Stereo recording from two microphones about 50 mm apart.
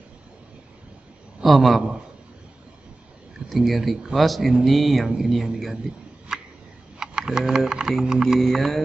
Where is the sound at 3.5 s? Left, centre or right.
Centre.